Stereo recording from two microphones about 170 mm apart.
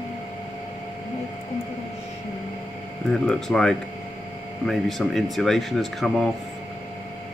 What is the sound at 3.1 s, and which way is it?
Speech, centre (ahead or behind).